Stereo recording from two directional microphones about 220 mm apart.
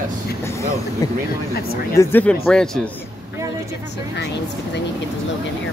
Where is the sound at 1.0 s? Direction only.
15° left (ahead or behind).